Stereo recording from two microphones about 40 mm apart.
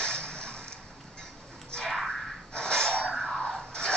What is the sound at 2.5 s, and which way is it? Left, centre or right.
Rub, left.